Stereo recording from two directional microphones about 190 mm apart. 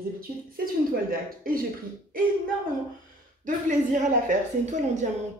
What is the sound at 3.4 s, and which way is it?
A woman's voice, 40° right (ahead or behind).